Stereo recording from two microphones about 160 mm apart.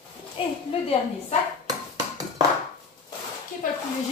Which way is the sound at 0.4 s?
35° left (ahead or behind).